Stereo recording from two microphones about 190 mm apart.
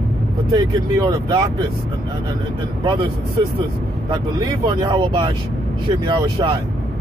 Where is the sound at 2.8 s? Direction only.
25° right (ahead or behind).